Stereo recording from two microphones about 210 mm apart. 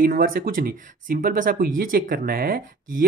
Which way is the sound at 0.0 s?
40° right (ahead or behind).